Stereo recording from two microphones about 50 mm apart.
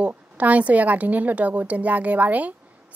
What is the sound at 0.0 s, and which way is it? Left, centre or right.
A woman's voice, right.